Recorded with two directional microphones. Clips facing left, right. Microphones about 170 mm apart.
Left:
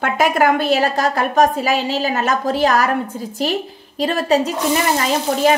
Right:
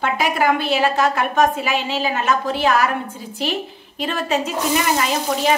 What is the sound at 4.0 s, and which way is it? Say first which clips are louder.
Speech: left 5 dB; 35° left (ahead or behind).